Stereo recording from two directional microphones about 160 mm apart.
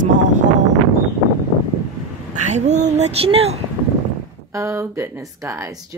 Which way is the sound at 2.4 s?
45° right (ahead or behind).